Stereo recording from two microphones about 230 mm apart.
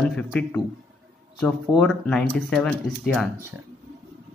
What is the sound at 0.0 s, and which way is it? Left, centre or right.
Speech, centre.